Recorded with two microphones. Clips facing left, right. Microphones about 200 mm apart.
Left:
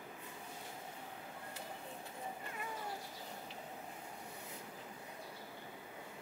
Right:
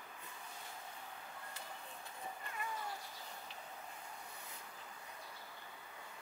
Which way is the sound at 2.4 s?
15° left (ahead or behind).